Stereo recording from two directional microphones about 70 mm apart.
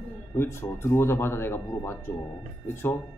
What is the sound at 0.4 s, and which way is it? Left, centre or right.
A man's voice, left.